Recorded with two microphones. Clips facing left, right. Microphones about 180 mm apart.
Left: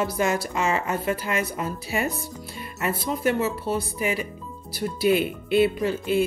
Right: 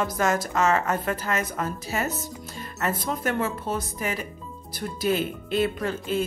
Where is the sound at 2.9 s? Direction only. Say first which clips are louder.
Left 3 dB; 45° right (ahead or behind).